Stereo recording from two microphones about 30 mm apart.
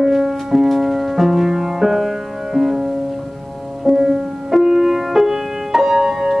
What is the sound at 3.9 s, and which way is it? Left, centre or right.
Music, centre.